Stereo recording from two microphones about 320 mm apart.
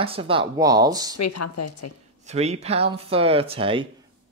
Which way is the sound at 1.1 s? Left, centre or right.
Left.